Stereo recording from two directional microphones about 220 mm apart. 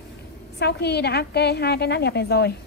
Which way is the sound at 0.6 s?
50° left (ahead or behind).